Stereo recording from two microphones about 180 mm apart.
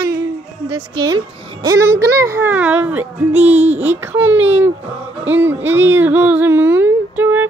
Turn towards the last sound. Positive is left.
turn(degrees=-10)  # may be behind; listen again after turning